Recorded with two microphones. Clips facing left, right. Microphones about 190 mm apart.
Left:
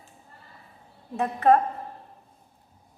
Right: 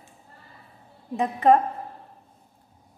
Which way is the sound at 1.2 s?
15° right (ahead or behind).